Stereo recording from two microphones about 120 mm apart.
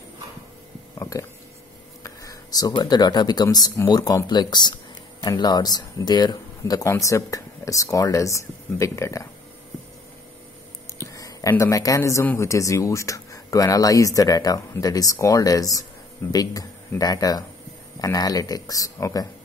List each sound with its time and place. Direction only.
1.1 s speech: 30° left (ahead or behind)
2.0 s a sound: 30° left (ahead or behind)
2.7 s speech: 35° left (ahead or behind)
11.0 s speech: 25° left (ahead or behind)